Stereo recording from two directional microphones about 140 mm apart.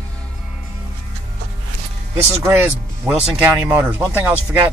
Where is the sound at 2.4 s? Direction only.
20° right (ahead or behind).